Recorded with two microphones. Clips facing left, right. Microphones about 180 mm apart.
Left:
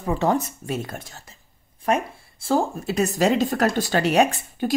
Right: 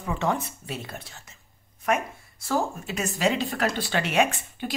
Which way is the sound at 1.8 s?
30° left (ahead or behind).